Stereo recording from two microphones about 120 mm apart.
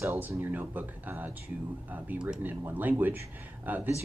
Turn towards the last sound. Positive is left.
turn(degrees=-15)  # may be behind; listen again after turning